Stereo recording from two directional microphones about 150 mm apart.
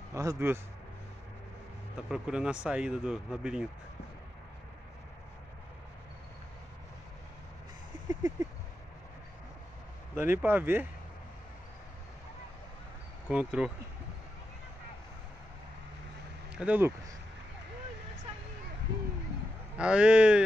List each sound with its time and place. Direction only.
0.1 s speech: 20° right (ahead or behind)
2.0 s speech: 5° right (ahead or behind)
8.1 s a sound: 25° right (ahead or behind)
10.1 s speech: 15° right (ahead or behind)
13.3 s speech: 10° right (ahead or behind)
16.5 s speech: 10° right (ahead or behind)
19.8 s speech: 5° right (ahead or behind)